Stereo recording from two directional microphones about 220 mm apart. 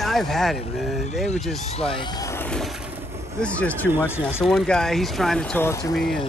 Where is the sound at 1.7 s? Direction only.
25° left (ahead or behind).